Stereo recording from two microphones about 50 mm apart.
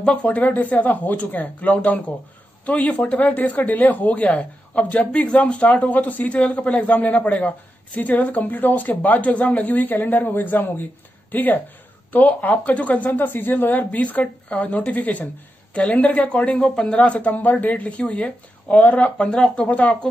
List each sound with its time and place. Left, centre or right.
0.0 s speech: left
17.3 s speech: left
19.3 s speech: centre
19.6 s speech: left